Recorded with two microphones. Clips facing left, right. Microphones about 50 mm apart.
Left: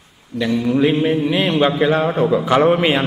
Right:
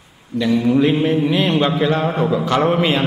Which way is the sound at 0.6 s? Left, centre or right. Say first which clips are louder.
Even; centre.